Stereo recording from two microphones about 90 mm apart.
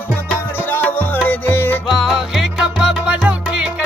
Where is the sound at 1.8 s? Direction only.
5° right (ahead or behind).